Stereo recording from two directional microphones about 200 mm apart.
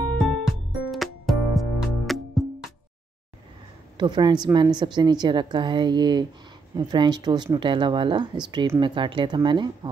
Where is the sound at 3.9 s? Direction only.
20° right (ahead or behind).